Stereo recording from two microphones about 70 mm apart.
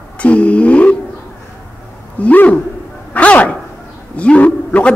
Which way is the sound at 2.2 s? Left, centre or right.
Left.